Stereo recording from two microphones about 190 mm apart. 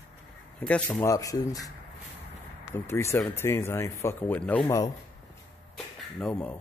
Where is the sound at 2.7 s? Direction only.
15° left (ahead or behind).